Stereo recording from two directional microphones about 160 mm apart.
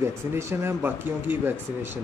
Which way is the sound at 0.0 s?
15° right (ahead or behind).